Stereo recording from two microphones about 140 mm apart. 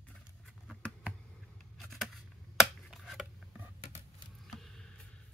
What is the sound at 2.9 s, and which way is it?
Scissors, centre (ahead or behind).